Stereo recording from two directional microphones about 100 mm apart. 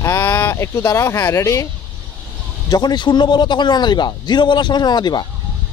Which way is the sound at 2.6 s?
45° left (ahead or behind).